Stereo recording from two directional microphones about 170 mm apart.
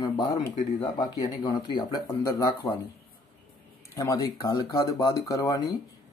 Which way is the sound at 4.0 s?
20° left (ahead or behind).